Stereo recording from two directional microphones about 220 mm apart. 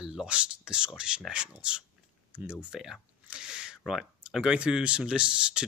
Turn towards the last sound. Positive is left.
turn(degrees=-5)  # may be behind; listen again after turning